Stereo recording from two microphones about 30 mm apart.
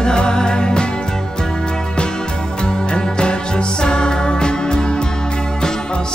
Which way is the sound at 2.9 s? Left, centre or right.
Left.